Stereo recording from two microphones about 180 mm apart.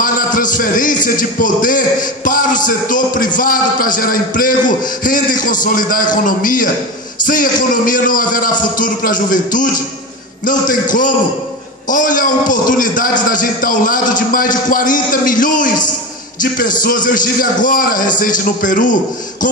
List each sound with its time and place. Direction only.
0.0 s music: 50° left (ahead or behind)
1.4 s a man's voice: 50° left (ahead or behind)
16.8 s a man's voice: 50° left (ahead or behind)